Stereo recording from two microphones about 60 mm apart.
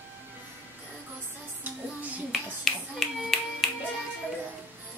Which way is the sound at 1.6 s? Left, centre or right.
Right.